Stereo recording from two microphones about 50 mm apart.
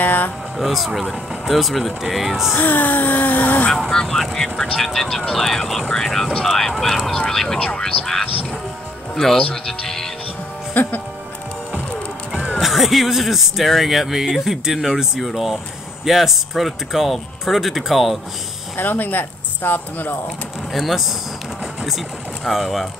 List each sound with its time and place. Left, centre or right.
0.0 s a sound: left
0.6 s speech: centre
2.5 s speech: left
3.9 s speech: centre
7.8 s speech: centre
10.7 s speech: left
12.5 s speech: centre
18.8 s speech: left
20.7 s speech: centre
22.4 s speech: centre